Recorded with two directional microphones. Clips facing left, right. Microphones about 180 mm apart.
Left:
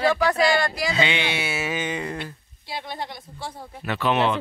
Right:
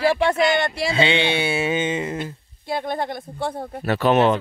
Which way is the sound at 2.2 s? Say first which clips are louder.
Right 5 dB; 50° right (ahead or behind).